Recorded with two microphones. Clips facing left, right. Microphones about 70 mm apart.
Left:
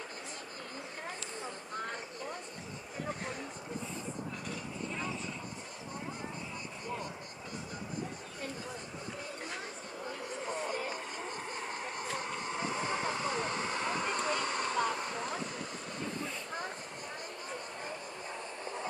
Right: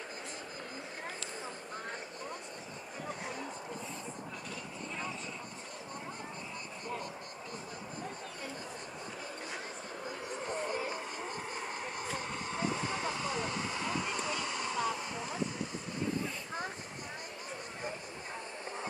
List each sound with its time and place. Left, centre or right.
11.5 s vehicle: centre
12.7 s vehicle: left